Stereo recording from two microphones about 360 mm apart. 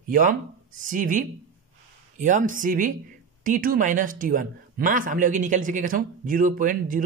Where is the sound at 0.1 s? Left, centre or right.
Right.